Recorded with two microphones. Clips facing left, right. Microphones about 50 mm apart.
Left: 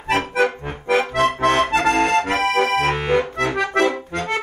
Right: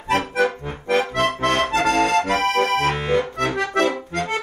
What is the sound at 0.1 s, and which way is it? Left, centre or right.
Accordion, left.